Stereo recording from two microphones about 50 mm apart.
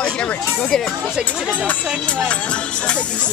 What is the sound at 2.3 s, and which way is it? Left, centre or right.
Speech, left.